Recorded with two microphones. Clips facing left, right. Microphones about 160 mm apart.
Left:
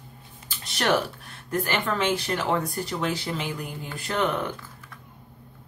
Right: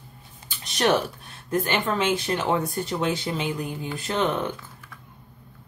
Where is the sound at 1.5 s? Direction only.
20° right (ahead or behind).